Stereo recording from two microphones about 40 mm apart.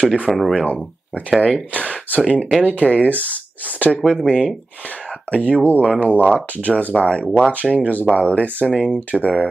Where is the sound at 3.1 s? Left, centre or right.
Left.